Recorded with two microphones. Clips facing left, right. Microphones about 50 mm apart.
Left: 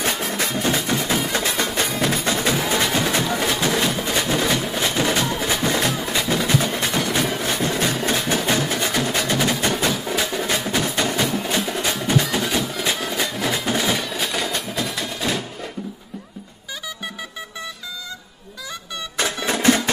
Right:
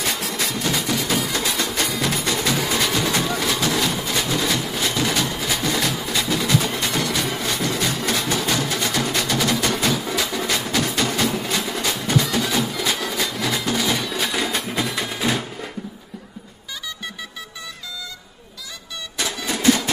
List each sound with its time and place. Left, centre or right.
0.0 s music: left; by 12.5 s centre
12.5 s music: centre
13.9 s a sound: centre
15.0 s music: centre
19.1 s music: left